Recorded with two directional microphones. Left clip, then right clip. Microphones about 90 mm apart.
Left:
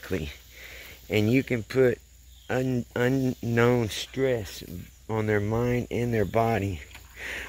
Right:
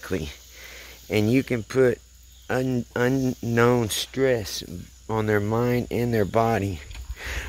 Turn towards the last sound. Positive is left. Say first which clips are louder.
# right 1 dB
turn(degrees=-5)  # may be behind; listen again after turning